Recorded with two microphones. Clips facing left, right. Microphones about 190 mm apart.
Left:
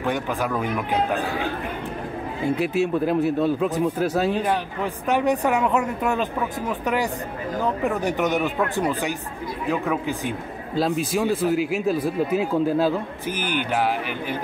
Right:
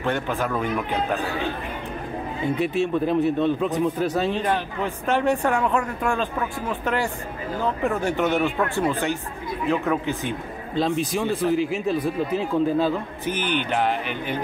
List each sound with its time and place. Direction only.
0.0 s speech: 15° left (ahead or behind)
2.5 s speech: 5° left (ahead or behind)
7.9 s speech: 15° left (ahead or behind)